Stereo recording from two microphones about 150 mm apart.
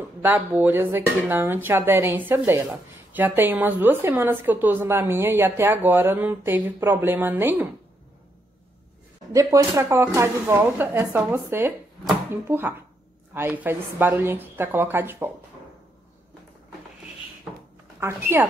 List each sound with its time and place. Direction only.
0.2 s speech: 15° right (ahead or behind)
9.3 s speech: 20° right (ahead or behind)
18.0 s speech: 15° right (ahead or behind)